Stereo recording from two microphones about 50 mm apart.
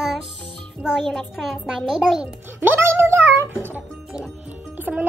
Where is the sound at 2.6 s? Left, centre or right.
Right.